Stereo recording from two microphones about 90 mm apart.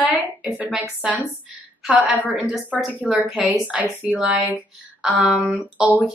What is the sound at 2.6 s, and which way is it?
Speech, 15° left (ahead or behind).